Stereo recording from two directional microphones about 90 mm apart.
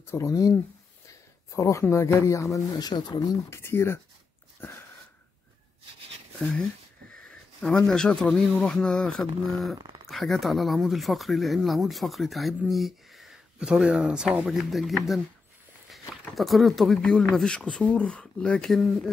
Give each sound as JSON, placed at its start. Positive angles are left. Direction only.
{"t": 0.0, "sound": "speech", "side_deg": 30}
{"t": 0.3, "sound": "speech", "side_deg": 40}
{"t": 3.4, "sound": "speech", "side_deg": 30}
{"t": 4.6, "sound": "a sound", "side_deg": 25}
{"t": 7.8, "sound": "speech", "side_deg": 5}
{"t": 9.8, "sound": "a sound", "side_deg": -50}
{"t": 10.0, "sound": "speech", "side_deg": 0}